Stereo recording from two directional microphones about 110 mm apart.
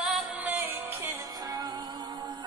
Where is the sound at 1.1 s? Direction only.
35° right (ahead or behind).